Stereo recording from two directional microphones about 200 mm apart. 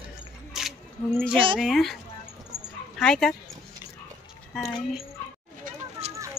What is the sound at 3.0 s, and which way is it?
Speech, 5° left (ahead or behind).